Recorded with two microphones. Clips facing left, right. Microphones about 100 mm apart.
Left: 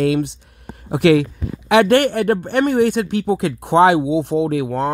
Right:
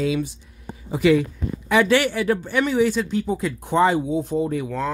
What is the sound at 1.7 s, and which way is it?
Speech, 60° left (ahead or behind).